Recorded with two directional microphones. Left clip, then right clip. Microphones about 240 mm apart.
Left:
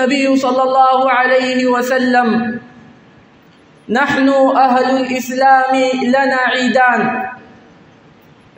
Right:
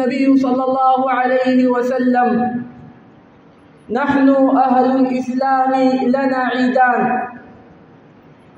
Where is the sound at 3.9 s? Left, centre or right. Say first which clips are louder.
Left 2 dB; left.